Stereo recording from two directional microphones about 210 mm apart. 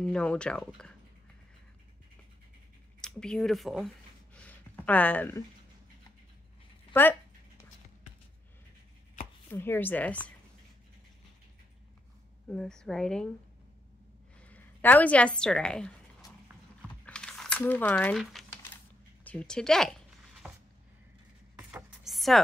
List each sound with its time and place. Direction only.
0.0 s a woman's voice: 5° left (ahead or behind)
3.0 s a sound: 5° left (ahead or behind)
6.9 s a sound: 10° left (ahead or behind)
9.5 s speech: 10° left (ahead or behind)
12.4 s a woman's voice: 5° left (ahead or behind)
14.4 s a woman's voice: 5° left (ahead or behind)
17.0 s a sound: 5° left (ahead or behind)
19.2 s a woman's voice: 5° left (ahead or behind)
21.5 s chopping: 5° right (ahead or behind)